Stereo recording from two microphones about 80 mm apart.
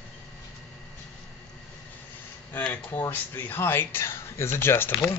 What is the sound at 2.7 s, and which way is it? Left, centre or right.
Speech, left.